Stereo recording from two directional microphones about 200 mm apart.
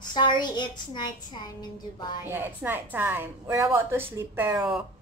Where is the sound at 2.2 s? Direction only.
10° right (ahead or behind).